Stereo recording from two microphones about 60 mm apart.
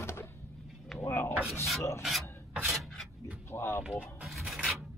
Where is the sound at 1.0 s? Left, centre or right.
Left.